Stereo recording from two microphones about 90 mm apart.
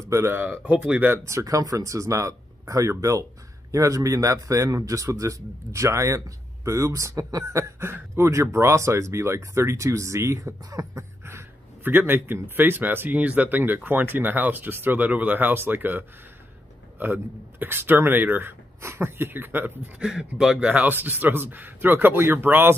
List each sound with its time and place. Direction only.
0.1 s speech: 30° right (ahead or behind)
1.2 s speech: 35° right (ahead or behind)
20.0 s speech: 10° right (ahead or behind); by 22.8 s 25° right (ahead or behind)